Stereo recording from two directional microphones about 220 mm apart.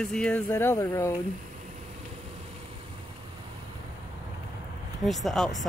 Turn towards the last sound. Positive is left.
turn(degrees=0)  # may be behind; listen again after turning